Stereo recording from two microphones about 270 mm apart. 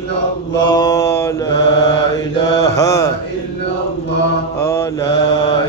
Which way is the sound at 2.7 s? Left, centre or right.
Centre.